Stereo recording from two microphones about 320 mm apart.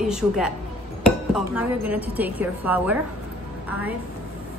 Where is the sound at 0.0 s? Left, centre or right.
Centre.